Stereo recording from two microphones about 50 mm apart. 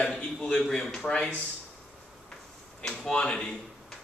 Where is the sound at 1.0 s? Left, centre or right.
Left.